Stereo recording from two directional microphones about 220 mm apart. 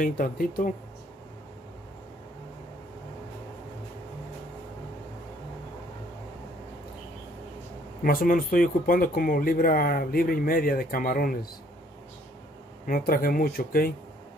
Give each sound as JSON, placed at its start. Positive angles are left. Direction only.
{"t": 0.0, "sound": "speech", "side_deg": 40}
{"t": 8.0, "sound": "speech", "side_deg": 40}
{"t": 12.8, "sound": "speech", "side_deg": 40}